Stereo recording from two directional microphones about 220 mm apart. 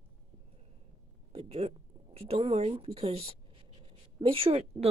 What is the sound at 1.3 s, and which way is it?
Speech, 30° right (ahead or behind).